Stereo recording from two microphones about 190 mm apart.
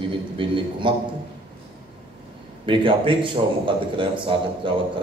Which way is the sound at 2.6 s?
25° right (ahead or behind).